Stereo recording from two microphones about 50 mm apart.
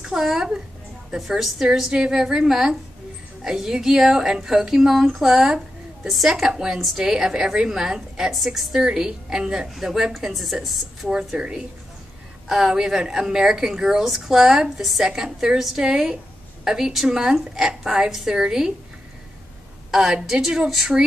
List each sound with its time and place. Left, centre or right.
0.0 s a woman's voice: centre
11.1 s speech: centre
19.9 s speech: centre